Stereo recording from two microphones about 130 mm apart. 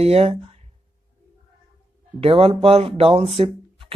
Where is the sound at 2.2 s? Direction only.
45° right (ahead or behind).